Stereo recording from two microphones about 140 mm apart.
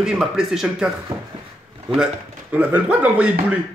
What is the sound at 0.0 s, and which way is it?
Speech, 5° right (ahead or behind).